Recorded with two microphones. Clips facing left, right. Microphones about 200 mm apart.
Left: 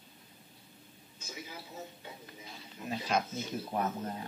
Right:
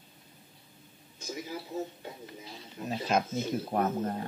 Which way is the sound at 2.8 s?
45° right (ahead or behind).